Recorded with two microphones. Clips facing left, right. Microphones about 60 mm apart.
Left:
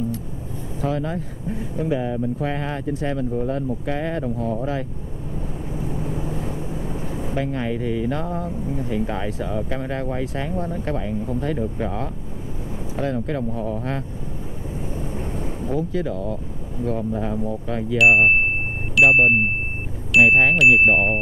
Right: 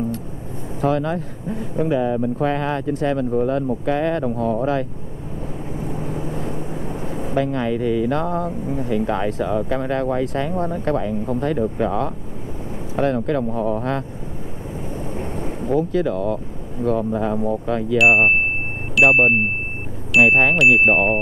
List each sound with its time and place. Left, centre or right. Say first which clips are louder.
0.7 s speech: right 5 dB; right
5.9 s vehicle: right 1 dB; right
7.3 s speech: right 5 dB; right
8.5 s speech: right 3 dB; right
8.8 s speech: right 6 dB; right
10.5 s speech: right 4 dB; right
15.1 s vehicle: right 2 dB; right
15.9 s speech: right 5 dB; right
19.0 s speech: right 1 dB; centre
20.2 s speech: right 1 dB; right